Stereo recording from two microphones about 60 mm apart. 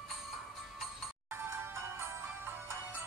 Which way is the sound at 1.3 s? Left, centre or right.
Right.